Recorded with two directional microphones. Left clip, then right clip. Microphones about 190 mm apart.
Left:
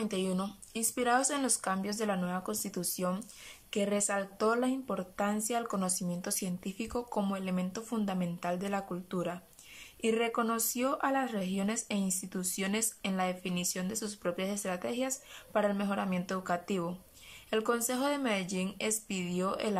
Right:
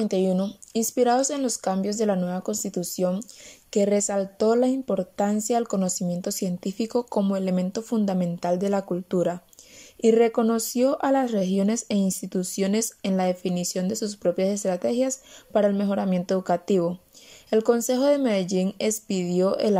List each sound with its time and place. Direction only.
0.0 s speech: 20° right (ahead or behind)